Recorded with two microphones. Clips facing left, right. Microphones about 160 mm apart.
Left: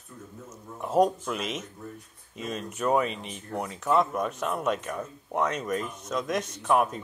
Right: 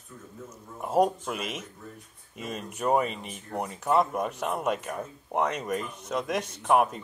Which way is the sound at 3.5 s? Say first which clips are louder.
Even; 10° right (ahead or behind).